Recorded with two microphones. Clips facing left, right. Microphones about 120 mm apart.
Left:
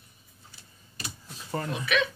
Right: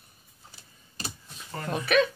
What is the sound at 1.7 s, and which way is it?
Speech, 40° right (ahead or behind).